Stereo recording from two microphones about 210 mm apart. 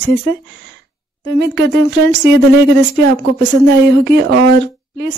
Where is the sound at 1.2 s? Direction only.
55° right (ahead or behind).